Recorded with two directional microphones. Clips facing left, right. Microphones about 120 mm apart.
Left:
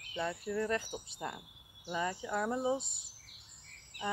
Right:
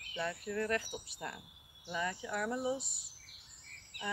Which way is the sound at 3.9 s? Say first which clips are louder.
Left 4 dB; 35° left (ahead or behind).